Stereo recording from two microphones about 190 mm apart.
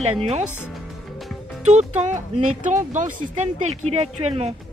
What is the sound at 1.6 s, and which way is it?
Speech, 35° right (ahead or behind).